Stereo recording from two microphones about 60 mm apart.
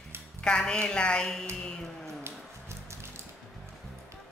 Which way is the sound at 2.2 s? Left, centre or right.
Right.